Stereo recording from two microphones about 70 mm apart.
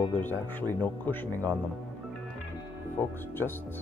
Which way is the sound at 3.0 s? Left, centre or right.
Left.